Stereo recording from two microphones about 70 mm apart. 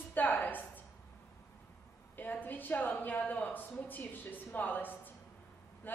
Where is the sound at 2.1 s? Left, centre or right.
Left.